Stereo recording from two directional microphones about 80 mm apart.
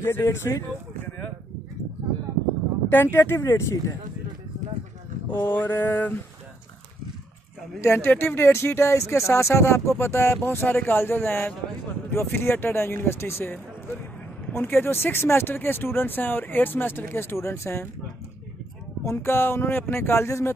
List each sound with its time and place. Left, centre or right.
0.0 s speech: left
2.9 s speech: left
5.3 s speech: left
7.8 s speech: left
19.0 s speech: left